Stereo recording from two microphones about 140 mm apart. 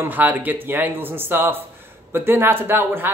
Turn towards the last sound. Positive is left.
turn(degrees=-15)  # may be behind; listen again after turning